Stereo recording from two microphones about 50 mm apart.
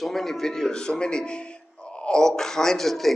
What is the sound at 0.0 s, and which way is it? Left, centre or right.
A man's voice, centre.